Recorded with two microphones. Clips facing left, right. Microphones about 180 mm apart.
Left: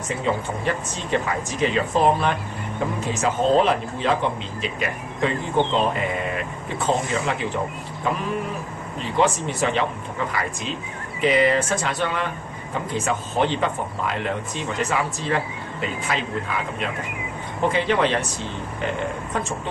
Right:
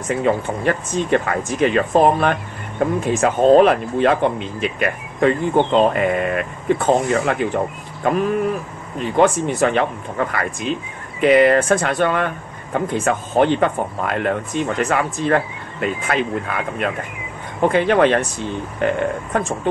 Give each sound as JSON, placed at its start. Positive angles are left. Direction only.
{"t": 0.1, "sound": "speech", "side_deg": -55}